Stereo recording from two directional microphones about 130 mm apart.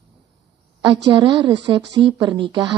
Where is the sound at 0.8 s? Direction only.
40° right (ahead or behind).